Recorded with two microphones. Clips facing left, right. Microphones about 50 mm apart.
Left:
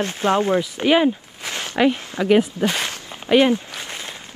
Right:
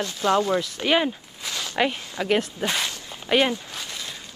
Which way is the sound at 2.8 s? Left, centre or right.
Left.